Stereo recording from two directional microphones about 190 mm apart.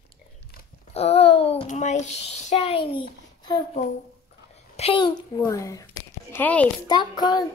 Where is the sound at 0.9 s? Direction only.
30° left (ahead or behind).